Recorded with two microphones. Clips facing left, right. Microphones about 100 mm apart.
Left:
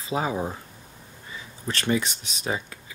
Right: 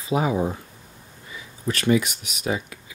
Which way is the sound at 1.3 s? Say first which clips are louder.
Right 4 dB; 35° left (ahead or behind).